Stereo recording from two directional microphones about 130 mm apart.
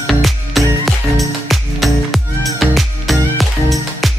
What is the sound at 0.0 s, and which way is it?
Music, centre (ahead or behind).